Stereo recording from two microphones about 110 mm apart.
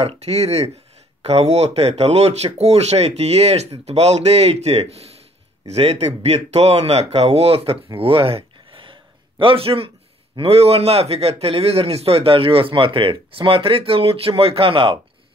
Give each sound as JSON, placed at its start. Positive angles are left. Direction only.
{"t": 0.0, "sound": "a man's voice", "side_deg": -75}